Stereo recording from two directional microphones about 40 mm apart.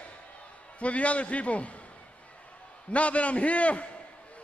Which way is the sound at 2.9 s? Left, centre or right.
Left.